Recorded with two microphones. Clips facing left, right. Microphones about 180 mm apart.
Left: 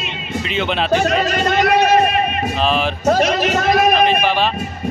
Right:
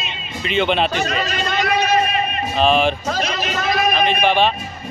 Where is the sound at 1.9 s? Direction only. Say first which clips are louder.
Left 4 dB; 60° left (ahead or behind).